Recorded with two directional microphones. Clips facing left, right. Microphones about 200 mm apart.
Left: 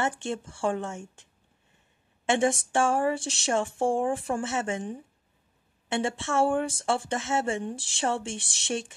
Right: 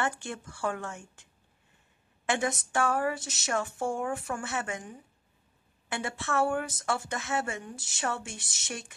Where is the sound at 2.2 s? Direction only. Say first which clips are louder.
Left 6 dB; 25° left (ahead or behind).